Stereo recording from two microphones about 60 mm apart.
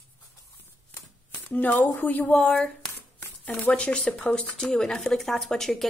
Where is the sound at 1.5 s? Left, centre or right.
Left.